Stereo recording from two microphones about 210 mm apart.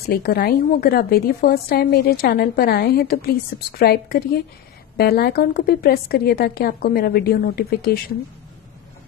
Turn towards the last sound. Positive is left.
turn(degrees=50)  # may be behind; listen again after turning